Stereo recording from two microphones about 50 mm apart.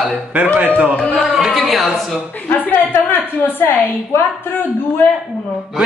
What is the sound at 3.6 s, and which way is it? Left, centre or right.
Speech, left.